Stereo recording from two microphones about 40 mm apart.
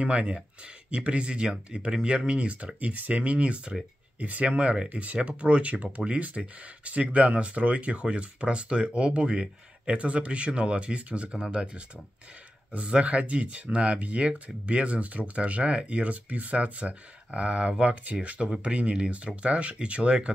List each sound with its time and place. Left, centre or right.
0.0 s speech: right